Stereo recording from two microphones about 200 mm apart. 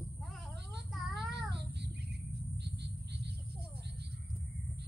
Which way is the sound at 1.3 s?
55° right (ahead or behind).